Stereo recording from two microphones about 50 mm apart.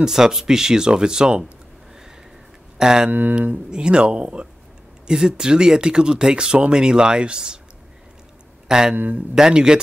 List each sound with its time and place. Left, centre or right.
0.0 s speech: centre
2.8 s speech: centre
3.1 s speech: right
3.7 s speech: centre
8.6 s speech: centre
8.9 s speech: right
9.3 s speech: centre